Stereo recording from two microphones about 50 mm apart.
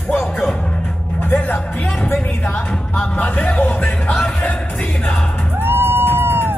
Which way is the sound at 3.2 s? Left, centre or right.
Left.